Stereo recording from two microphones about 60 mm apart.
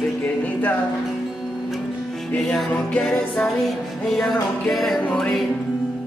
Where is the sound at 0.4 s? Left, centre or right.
Left.